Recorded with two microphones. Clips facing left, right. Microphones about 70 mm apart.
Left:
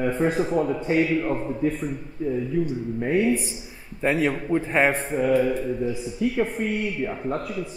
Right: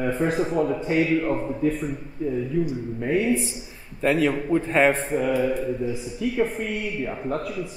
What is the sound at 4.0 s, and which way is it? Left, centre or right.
Speech, centre.